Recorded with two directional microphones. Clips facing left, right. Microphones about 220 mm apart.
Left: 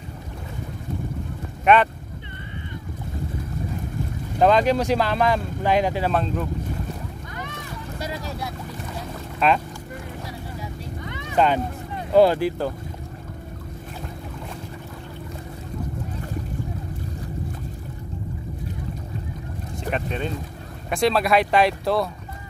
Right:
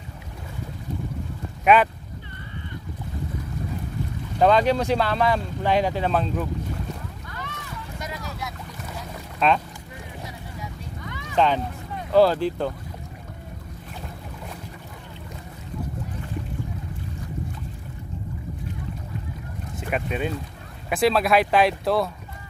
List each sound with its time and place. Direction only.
1.6 s speech: 5° right (ahead or behind)
4.4 s speech: centre (ahead or behind)
8.0 s vehicle: 30° left (ahead or behind)
9.4 s speech: 5° left (ahead or behind)
10.6 s vehicle: 25° left (ahead or behind)
11.3 s speech: 5° left (ahead or behind)
19.9 s speech: 10° right (ahead or behind)